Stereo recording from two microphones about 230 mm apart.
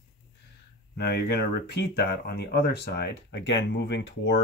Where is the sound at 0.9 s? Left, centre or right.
Left.